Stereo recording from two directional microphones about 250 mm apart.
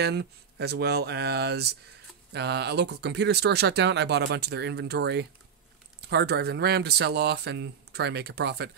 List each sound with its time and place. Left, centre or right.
0.0 s speech: right